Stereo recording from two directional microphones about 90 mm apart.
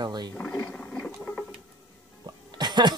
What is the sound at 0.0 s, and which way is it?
Speech, 55° right (ahead or behind).